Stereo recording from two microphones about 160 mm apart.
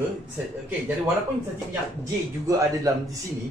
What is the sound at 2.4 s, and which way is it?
Speech, 20° right (ahead or behind).